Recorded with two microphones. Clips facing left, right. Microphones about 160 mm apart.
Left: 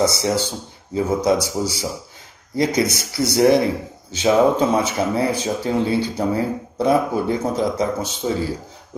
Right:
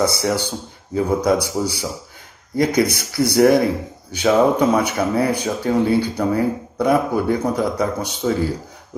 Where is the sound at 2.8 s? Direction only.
55° right (ahead or behind).